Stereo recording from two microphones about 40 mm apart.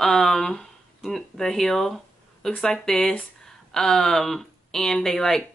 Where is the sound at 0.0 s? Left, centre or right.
Centre.